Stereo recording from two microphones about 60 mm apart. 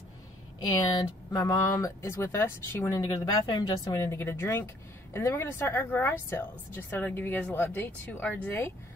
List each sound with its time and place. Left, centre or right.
1.3 s speech: left
2.0 s speech: left
2.9 s speech: left
4.0 s speech: left
8.5 s speech: left